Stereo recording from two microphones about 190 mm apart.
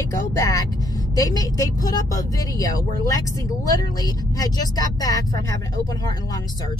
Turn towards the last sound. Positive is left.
turn(degrees=20)  # may be behind; listen again after turning